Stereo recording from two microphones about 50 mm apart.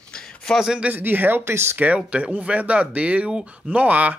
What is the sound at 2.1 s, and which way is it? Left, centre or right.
Speech, right.